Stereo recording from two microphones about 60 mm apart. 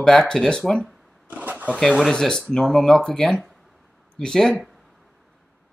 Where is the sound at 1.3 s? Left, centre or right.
Right.